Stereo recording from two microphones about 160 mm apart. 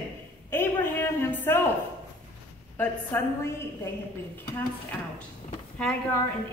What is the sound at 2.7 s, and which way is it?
Speech, 15° left (ahead or behind).